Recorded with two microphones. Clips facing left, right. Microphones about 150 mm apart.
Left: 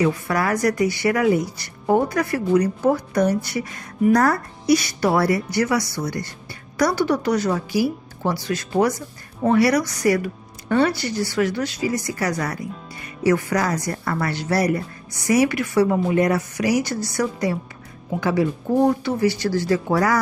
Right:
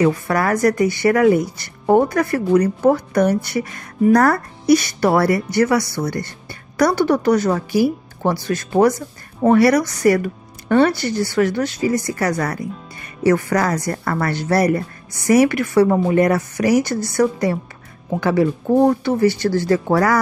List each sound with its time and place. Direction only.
0.0 s speech: 50° right (ahead or behind)
19.0 s speech: 55° right (ahead or behind)